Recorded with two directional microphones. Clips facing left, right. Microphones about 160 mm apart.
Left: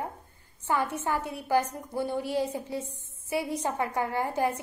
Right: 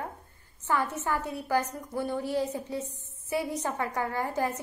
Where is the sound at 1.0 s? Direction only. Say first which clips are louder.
Left 1 dB; 15° left (ahead or behind).